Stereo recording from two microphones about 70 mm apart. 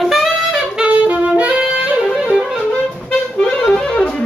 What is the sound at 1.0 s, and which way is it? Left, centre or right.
Saxophone, right.